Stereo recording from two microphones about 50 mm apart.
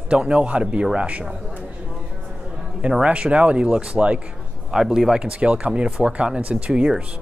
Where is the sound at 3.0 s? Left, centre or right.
Right.